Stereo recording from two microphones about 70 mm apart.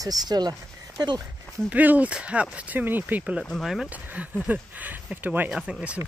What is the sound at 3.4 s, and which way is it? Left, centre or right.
Speech, centre.